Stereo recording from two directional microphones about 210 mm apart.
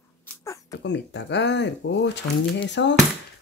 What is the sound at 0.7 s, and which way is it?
Speech, 55° left (ahead or behind).